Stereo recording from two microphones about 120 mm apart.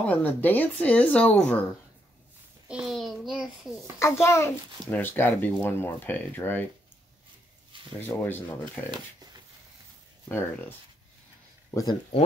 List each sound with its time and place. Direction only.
0.0 s speech: 15° left (ahead or behind)
2.7 s a child's voice: 5° right (ahead or behind)
4.0 s a child's voice: 25° left (ahead or behind)
8.2 s speech: 15° left (ahead or behind)
8.9 s speech: 35° right (ahead or behind)
10.2 s speech: 15° left (ahead or behind)
11.7 s speech: 30° left (ahead or behind)